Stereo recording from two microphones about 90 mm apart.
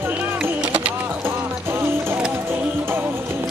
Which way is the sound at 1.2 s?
25° right (ahead or behind).